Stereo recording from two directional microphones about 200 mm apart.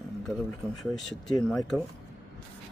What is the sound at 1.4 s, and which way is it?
Speech, 5° left (ahead or behind).